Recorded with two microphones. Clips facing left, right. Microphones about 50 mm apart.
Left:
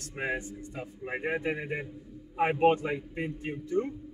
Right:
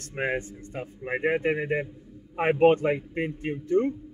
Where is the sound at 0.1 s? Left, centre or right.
Right.